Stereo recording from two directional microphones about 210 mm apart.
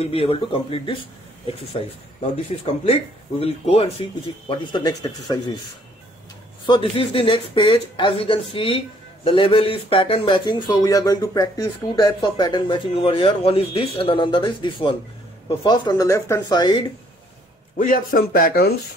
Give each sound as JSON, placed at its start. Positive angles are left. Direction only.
{"t": 0.0, "sound": "speech", "side_deg": 25}
{"t": 2.3, "sound": "speech", "side_deg": 30}
{"t": 6.6, "sound": "speech", "side_deg": 25}
{"t": 17.7, "sound": "speech", "side_deg": 40}